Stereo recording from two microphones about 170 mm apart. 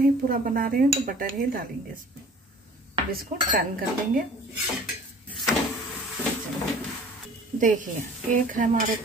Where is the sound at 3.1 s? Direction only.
60° right (ahead or behind).